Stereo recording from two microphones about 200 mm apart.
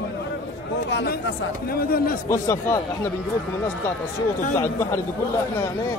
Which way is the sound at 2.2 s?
15° left (ahead or behind).